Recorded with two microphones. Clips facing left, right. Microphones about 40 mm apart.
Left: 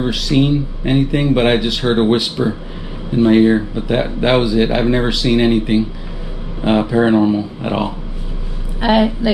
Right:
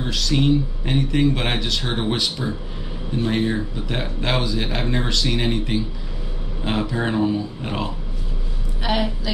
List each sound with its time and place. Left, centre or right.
0.0 s a woman's voice: centre